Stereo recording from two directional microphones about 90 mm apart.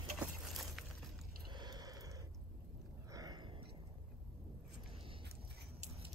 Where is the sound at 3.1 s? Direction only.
45° right (ahead or behind).